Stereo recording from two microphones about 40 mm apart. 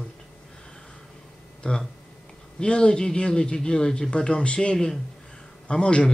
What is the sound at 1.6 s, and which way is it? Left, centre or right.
A man's voice, left.